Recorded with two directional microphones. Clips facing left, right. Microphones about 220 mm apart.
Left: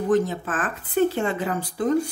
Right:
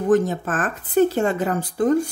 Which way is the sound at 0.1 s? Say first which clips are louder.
Right 4 dB; 45° right (ahead or behind).